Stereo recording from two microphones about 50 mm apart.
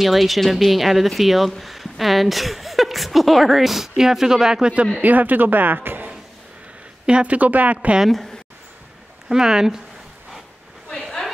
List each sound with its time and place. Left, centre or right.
0.0 s a woman's voice: centre
5.0 s speech: right
8.1 s a woman's voice: centre
9.3 s speech: centre
10.9 s a sound: centre